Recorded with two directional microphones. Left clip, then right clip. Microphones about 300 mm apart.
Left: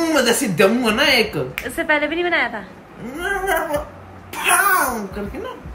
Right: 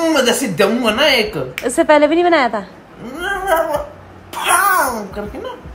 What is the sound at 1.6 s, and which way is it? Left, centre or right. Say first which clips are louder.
Speech: right 9 dB; centre.